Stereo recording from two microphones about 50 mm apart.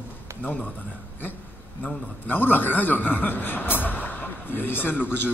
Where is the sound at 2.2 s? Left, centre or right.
Left.